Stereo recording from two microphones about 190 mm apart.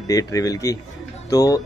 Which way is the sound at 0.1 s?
20° left (ahead or behind).